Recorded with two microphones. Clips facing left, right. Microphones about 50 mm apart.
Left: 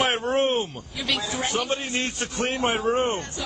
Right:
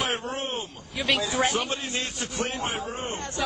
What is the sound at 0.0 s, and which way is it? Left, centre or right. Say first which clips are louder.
Speech: left 7 dB; left.